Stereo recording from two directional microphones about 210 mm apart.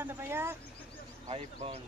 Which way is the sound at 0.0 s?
10° right (ahead or behind).